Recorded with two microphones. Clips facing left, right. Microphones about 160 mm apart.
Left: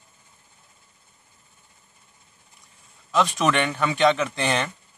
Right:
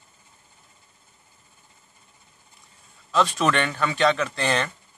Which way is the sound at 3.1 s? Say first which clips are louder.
Even; 15° left (ahead or behind).